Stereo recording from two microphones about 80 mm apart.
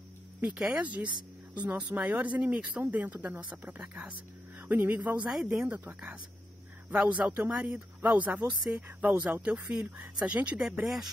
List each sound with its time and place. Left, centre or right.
0.6 s speech: centre
4.6 s a woman's voice: right